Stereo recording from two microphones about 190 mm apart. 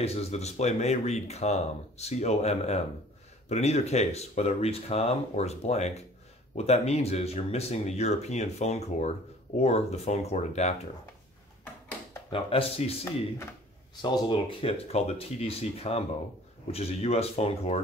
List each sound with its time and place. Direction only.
0.0 s speech: 30° left (ahead or behind)
12.3 s speech: 30° left (ahead or behind)
14.0 s speech: 25° left (ahead or behind)